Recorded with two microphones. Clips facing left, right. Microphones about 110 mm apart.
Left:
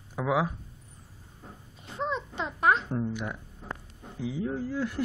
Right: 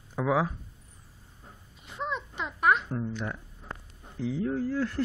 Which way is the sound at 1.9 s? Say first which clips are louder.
Left 2 dB; 30° left (ahead or behind).